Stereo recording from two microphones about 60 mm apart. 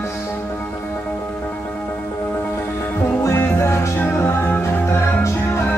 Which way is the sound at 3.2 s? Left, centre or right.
Left.